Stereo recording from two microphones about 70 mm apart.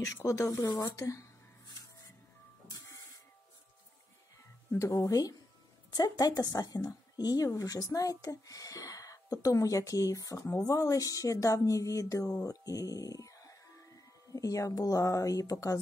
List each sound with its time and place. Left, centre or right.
0.0 s speech: left
0.9 s speech: left
4.7 s speech: left